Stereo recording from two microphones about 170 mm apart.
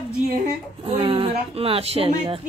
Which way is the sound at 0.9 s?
30° right (ahead or behind).